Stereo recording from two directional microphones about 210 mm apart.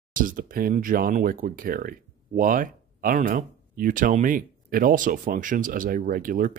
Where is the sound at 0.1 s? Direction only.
40° right (ahead or behind).